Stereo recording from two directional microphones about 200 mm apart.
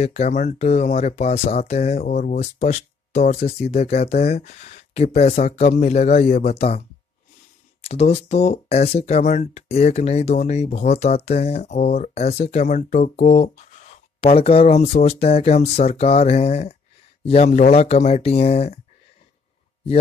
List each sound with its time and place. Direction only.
0.0 s speech: 35° left (ahead or behind)
7.8 s speech: 30° left (ahead or behind)